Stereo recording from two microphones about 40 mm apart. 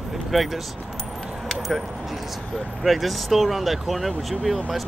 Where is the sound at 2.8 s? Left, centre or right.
Centre.